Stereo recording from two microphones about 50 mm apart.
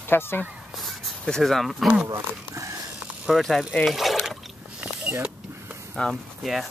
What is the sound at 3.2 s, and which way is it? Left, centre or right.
Speech, centre.